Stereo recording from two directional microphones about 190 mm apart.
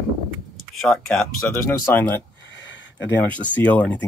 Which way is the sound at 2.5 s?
70° left (ahead or behind).